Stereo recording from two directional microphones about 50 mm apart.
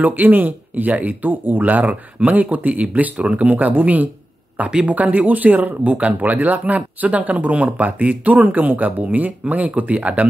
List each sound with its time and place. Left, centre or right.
0.0 s speech: right